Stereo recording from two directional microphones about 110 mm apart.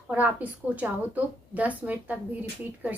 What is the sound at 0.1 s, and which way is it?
Speech, 15° right (ahead or behind).